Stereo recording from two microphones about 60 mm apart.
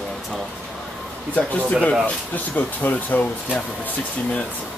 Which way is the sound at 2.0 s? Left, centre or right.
Left.